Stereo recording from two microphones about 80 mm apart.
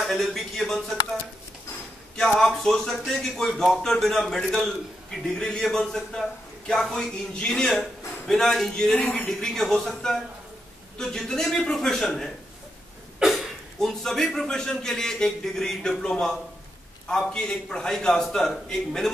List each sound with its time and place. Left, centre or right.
0.0 s speech: centre
2.1 s a man's voice: centre
9.0 s speech: centre
9.4 s a man's voice: centre
13.2 s a man's voice: centre